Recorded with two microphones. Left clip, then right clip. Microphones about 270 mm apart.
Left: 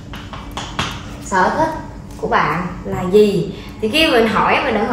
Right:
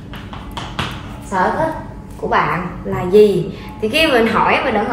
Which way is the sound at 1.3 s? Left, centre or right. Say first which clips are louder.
Left 1 dB; centre.